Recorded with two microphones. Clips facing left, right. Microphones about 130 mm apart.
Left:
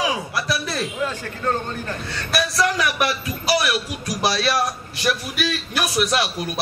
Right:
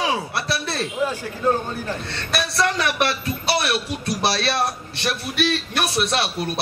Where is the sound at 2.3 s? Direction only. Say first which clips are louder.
Left 1 dB; 30° right (ahead or behind).